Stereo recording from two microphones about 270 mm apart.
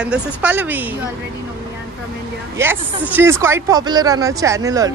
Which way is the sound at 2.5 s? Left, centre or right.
Centre.